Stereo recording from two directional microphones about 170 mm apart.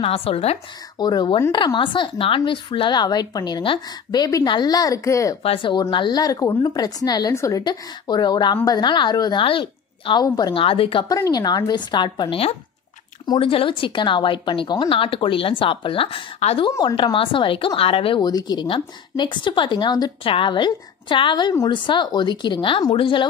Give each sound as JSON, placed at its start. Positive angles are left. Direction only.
{"t": 0.0, "sound": "speech", "side_deg": 35}
{"t": 0.9, "sound": "speech", "side_deg": 25}
{"t": 5.4, "sound": "speech", "side_deg": 30}